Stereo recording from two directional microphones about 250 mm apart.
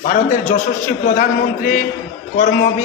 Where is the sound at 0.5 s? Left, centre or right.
Left.